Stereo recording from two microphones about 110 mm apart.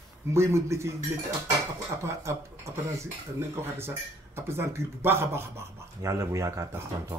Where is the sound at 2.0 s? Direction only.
25° right (ahead or behind).